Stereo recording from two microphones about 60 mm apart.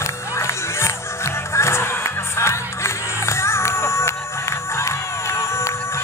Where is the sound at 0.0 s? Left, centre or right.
Left.